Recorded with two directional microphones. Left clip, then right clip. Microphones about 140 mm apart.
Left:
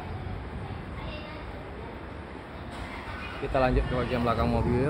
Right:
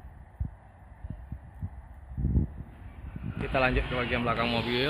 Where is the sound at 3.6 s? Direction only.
10° left (ahead or behind).